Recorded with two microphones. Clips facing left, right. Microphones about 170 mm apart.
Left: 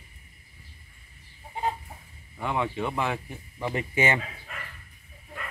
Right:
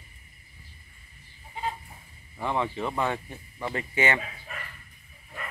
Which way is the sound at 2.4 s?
Centre (ahead or behind).